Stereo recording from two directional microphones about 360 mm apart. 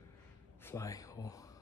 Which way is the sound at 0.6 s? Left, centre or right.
Centre.